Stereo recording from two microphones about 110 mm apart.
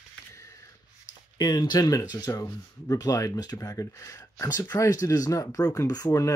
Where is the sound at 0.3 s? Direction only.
30° left (ahead or behind).